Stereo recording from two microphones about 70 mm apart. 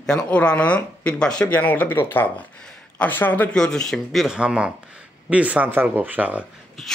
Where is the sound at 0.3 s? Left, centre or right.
Centre.